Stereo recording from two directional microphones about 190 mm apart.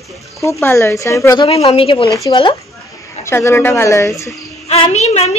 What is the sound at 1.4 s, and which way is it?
Speech, 30° left (ahead or behind).